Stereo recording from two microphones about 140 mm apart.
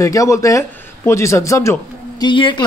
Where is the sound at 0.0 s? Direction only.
25° left (ahead or behind).